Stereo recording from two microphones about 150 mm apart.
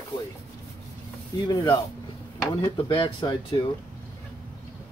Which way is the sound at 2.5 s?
35° left (ahead or behind).